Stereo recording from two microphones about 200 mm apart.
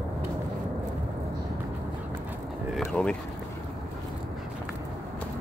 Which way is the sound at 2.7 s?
Centre (ahead or behind).